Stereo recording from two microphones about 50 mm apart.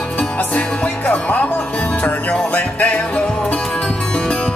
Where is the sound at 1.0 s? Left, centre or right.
Left.